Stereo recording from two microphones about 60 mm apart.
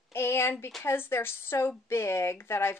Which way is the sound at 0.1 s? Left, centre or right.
Left.